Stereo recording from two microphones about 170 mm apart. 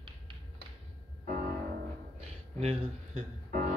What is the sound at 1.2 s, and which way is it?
Music, 60° right (ahead or behind).